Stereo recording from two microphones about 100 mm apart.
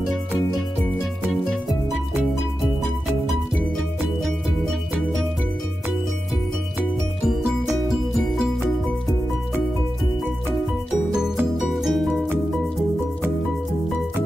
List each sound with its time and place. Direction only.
7.2 s music: centre (ahead or behind)
11.5 s music: centre (ahead or behind)